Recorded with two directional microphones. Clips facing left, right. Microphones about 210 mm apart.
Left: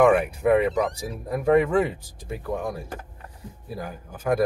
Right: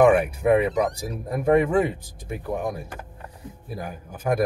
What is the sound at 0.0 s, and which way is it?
Speech, 10° right (ahead or behind).